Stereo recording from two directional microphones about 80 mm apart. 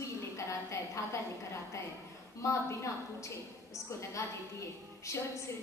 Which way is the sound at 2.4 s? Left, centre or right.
Left.